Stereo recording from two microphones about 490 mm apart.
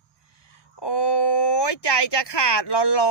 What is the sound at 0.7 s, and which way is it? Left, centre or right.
Speech, left.